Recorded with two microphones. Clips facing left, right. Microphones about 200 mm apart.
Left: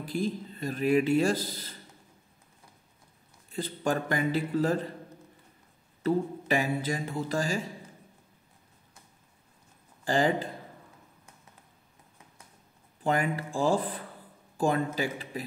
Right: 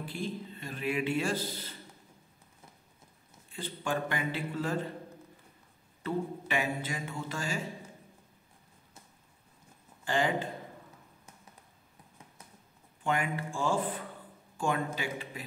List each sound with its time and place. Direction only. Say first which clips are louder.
0.0 s speech: left 6 dB; 40° left (ahead or behind)
3.5 s speech: left 5 dB; 40° left (ahead or behind)
6.0 s speech: left 6 dB; 40° left (ahead or behind)
10.0 s speech: left 4 dB; 35° left (ahead or behind)
13.0 s speech: left 4 dB; 35° left (ahead or behind)